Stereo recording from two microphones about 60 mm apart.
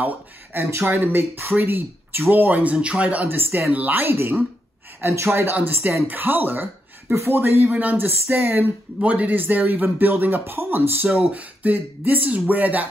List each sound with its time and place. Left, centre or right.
0.0 s speech: right
3.3 s speech: right
11.1 s speech: right